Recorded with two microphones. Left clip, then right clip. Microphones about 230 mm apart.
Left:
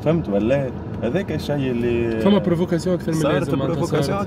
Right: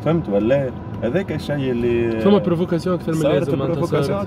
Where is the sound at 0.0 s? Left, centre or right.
Centre.